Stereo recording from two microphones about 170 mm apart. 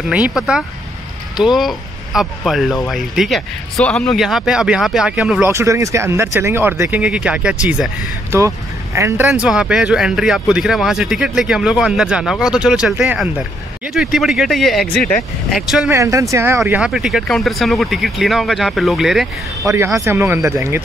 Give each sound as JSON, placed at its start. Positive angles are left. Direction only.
{"t": 0.1, "sound": "speech", "side_deg": -5}
{"t": 5.5, "sound": "speech", "side_deg": -20}
{"t": 8.3, "sound": "speech", "side_deg": -15}
{"t": 15.9, "sound": "speech", "side_deg": -20}
{"t": 19.6, "sound": "speech", "side_deg": -15}